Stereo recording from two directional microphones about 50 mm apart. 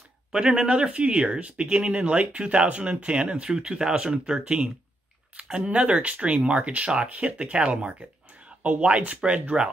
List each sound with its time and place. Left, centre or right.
0.3 s speech: centre